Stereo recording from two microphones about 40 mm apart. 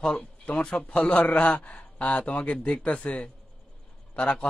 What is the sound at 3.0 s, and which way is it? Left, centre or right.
Speech, left.